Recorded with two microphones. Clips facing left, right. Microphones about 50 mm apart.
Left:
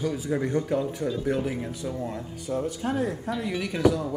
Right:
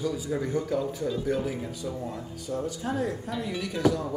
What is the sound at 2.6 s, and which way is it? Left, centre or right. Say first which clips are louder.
Speech: left 2 dB; left.